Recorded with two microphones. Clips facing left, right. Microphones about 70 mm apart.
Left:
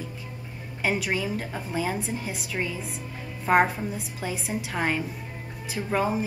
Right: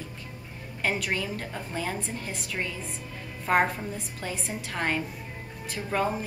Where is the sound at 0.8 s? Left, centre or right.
Centre.